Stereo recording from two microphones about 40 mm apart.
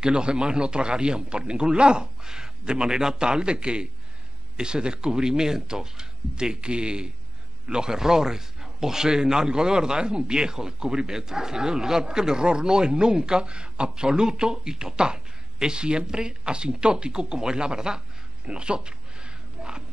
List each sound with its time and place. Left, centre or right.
0.0 s a man's voice: right